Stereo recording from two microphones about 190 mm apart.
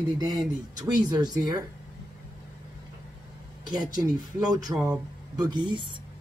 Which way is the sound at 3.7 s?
20° right (ahead or behind).